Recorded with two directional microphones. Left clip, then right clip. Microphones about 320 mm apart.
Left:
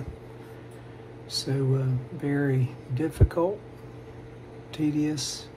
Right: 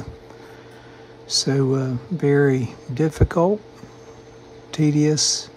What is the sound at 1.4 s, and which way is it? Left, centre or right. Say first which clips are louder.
Speech: right 8 dB; right.